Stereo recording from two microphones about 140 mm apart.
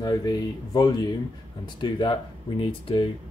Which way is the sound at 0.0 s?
30° left (ahead or behind).